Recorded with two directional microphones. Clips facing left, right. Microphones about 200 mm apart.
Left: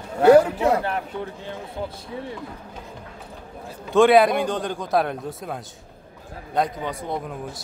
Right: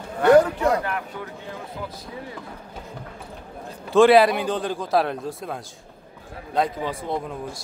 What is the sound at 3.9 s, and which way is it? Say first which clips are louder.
A man's voice: right 1 dB; centre (ahead or behind).